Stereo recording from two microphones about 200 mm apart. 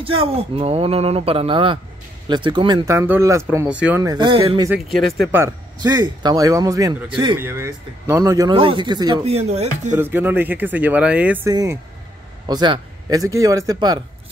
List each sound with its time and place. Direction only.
0.0 s speech: 30° right (ahead or behind)
4.9 s speech: centre (ahead or behind)
5.3 s speech: 15° right (ahead or behind)
7.3 s speech: 10° right (ahead or behind); by 9.9 s 35° right (ahead or behind)
9.9 s speech: 10° right (ahead or behind)